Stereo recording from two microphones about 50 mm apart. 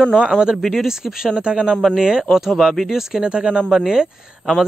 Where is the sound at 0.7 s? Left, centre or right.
Centre.